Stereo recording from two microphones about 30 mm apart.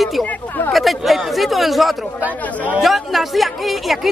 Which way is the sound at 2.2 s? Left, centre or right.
Right.